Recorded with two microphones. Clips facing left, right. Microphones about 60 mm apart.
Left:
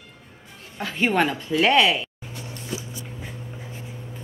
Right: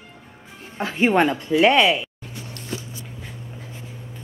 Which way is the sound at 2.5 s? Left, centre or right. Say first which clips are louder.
Even; centre.